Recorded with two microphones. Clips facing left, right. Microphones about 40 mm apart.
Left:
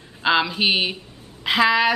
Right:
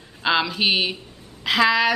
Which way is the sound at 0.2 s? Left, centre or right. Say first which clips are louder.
Left 1 dB; centre.